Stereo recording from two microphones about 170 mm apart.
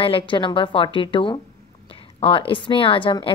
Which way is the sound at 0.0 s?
30° left (ahead or behind).